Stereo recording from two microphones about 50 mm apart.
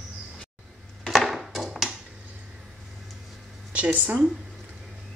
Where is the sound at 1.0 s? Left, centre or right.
Centre.